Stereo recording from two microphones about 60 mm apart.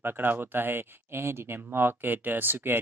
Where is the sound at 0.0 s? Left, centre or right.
Right.